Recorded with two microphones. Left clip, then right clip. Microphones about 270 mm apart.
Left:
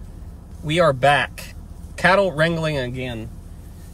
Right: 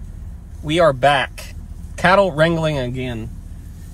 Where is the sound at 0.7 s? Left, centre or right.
Centre.